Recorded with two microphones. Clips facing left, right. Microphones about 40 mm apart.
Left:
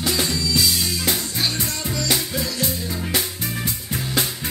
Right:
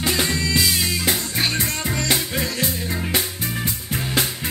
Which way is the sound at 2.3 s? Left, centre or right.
Right.